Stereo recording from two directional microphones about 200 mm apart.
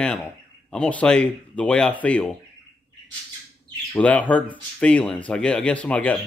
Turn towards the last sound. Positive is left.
turn(degrees=5)  # may be behind; listen again after turning